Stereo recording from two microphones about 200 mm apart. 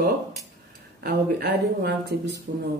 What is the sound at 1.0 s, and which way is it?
Speech, 50° right (ahead or behind).